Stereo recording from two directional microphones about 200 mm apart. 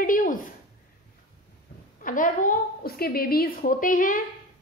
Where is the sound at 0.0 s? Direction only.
40° left (ahead or behind).